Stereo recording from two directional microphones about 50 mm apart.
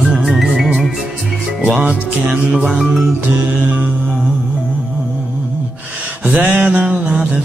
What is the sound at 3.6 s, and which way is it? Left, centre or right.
Music, right.